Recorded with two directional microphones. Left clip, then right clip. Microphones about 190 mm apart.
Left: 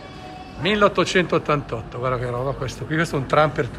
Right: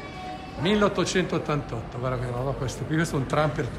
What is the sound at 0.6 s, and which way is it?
A man's voice, 15° right (ahead or behind).